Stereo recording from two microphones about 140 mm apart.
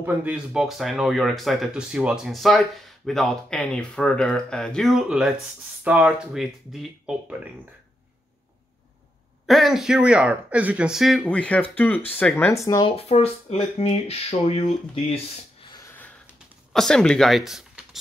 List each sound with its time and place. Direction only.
0.0 s speech: 10° right (ahead or behind)
9.5 s speech: centre (ahead or behind)
12.8 s speech: 45° left (ahead or behind)
16.3 s typing: 5° left (ahead or behind)